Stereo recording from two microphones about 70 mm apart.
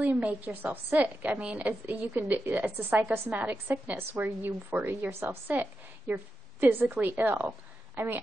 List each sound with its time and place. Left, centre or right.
0.0 s a woman's voice: right